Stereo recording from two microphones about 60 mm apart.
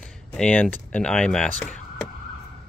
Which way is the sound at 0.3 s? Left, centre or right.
Left.